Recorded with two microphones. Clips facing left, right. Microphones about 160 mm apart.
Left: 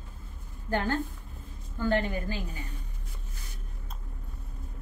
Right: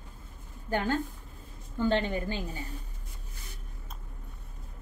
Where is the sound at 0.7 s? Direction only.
15° right (ahead or behind).